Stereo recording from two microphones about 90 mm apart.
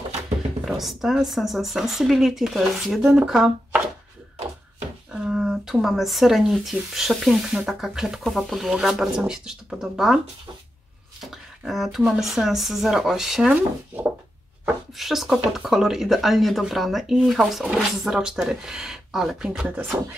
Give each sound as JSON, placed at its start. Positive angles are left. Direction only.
{"t": 0.7, "sound": "speech", "side_deg": -5}
{"t": 5.1, "sound": "speech", "side_deg": -5}
{"t": 11.2, "sound": "speech", "side_deg": 0}
{"t": 15.0, "sound": "speech", "side_deg": 0}